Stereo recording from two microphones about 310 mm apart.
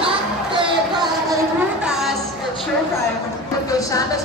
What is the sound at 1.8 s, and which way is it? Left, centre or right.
Music, centre.